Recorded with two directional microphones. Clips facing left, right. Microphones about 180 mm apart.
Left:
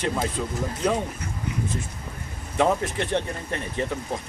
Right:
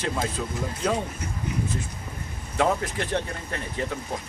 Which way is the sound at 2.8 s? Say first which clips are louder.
Left 2 dB; 25° left (ahead or behind).